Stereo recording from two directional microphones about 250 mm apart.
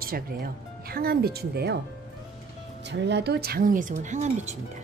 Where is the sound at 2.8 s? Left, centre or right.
Right.